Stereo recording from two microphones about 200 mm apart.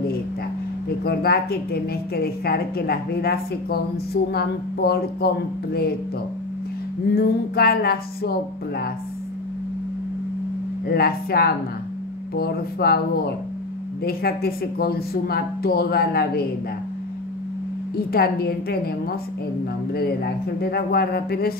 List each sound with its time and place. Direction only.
1.0 s a woman's voice: 50° left (ahead or behind)
7.2 s a woman's voice: 50° left (ahead or behind)
10.9 s a woman's voice: 50° left (ahead or behind)
18.1 s a woman's voice: 50° left (ahead or behind)